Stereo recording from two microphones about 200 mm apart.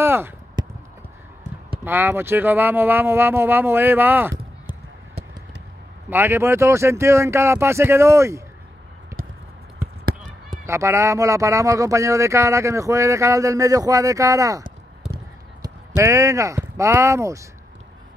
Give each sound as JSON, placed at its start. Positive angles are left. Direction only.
{"t": 0.0, "sound": "chop", "side_deg": -10}
{"t": 1.9, "sound": "speech", "side_deg": -10}
{"t": 6.0, "sound": "speech", "side_deg": -10}
{"t": 10.7, "sound": "speech", "side_deg": -15}
{"t": 15.6, "sound": "speech", "side_deg": -15}